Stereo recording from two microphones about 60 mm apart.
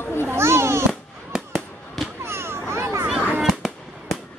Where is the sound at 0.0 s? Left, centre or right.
Left.